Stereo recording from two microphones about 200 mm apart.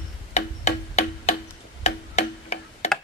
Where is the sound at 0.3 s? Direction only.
30° left (ahead or behind).